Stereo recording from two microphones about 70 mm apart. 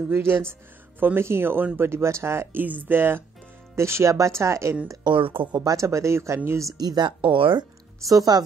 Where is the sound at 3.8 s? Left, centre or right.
Right.